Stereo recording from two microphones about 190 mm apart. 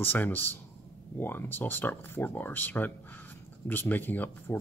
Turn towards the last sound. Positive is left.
turn(degrees=10)  # may be behind; listen again after turning